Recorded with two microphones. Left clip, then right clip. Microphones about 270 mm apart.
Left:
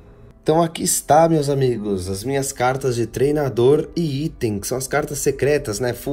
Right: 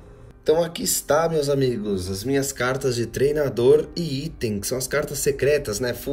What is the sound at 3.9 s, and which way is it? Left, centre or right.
Speech, left.